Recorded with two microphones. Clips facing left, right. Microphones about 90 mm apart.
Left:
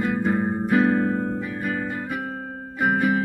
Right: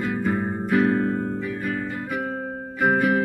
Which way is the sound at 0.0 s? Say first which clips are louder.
Left 2 dB; 15° left (ahead or behind).